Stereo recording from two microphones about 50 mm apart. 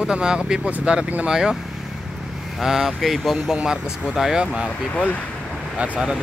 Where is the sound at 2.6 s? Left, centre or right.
Centre.